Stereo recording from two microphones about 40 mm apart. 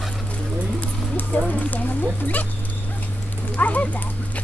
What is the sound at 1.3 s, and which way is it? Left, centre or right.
Speech, left.